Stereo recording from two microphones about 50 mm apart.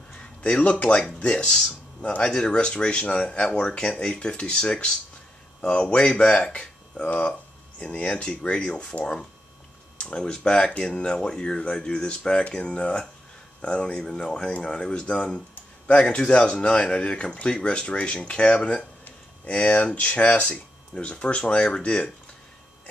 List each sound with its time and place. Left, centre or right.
0.2 s speech: left